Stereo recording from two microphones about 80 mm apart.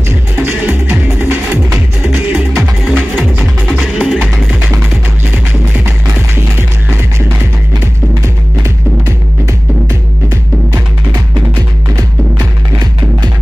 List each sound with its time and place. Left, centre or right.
0.4 s music: right
3.6 s music: centre
8.6 s music: right
11.9 s music: right